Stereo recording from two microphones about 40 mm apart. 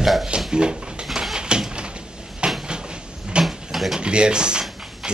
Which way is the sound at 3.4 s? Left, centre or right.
Centre.